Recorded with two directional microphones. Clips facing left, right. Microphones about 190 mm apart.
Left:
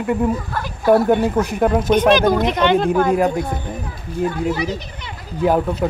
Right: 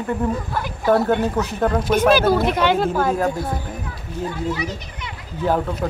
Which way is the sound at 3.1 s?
15° left (ahead or behind).